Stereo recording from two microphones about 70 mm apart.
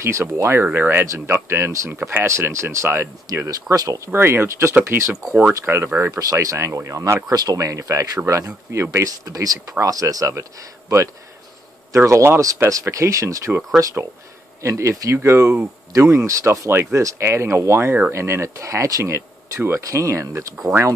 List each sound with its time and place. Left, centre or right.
0.0 s speech: right
1.0 s speech: right
1.9 s speech: right
3.4 s speech: right
4.1 s speech: right
6.1 s speech: right
7.2 s speech: right
7.5 s speech: right